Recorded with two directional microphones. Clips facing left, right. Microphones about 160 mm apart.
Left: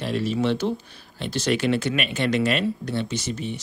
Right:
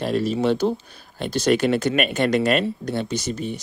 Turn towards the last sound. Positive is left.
turn(degrees=-40)  # may be behind; listen again after turning